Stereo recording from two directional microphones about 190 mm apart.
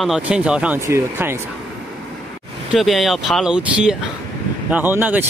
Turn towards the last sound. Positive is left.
turn(degrees=-10)  # may be behind; listen again after turning